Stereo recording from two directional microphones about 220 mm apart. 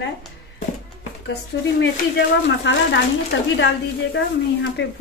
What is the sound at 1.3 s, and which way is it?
Speech, 50° left (ahead or behind).